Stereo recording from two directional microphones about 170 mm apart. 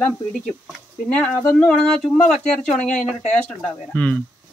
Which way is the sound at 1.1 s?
5° left (ahead or behind).